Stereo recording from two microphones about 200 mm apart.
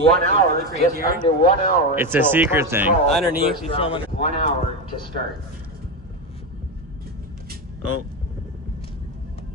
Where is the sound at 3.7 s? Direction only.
25° left (ahead or behind).